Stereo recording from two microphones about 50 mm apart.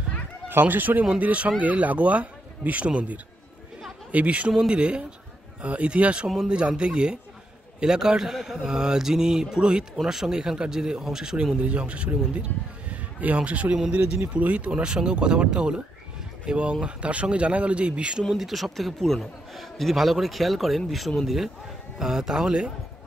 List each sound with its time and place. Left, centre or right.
0.5 s speech: right
1.0 s speech: right
6.2 s speech: centre
11.6 s speech: right
14.7 s speech: centre
18.3 s a man's voice: centre